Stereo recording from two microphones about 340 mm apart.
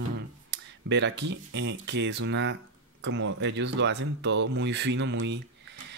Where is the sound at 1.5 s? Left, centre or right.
Right.